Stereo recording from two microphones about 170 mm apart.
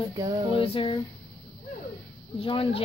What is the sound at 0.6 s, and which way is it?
Speech, 30° left (ahead or behind).